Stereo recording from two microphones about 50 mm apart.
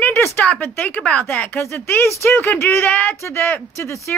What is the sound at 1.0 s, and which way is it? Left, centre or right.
Speech, left.